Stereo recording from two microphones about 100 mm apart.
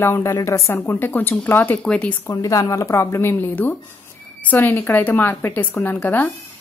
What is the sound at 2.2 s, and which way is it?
Speech, 35° left (ahead or behind).